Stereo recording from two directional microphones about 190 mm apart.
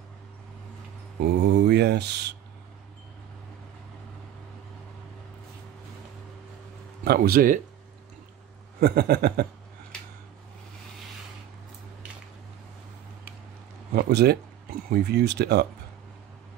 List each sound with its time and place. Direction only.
1.4 s speech: 60° right (ahead or behind)
7.1 s speech: 50° right (ahead or behind)
8.7 s speech: 55° right (ahead or behind)
13.9 s speech: 55° right (ahead or behind)